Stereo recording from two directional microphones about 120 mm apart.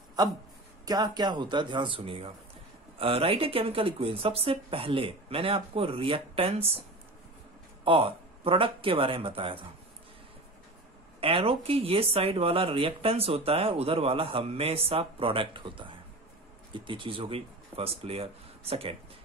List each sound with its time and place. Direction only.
0.8 s a man's voice: 35° right (ahead or behind); by 6.8 s 50° right (ahead or behind)
7.8 s speech: 50° right (ahead or behind)
11.1 s speech: 50° right (ahead or behind)